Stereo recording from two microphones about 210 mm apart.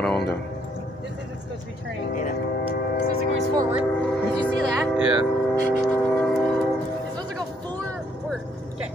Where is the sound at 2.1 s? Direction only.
40° left (ahead or behind).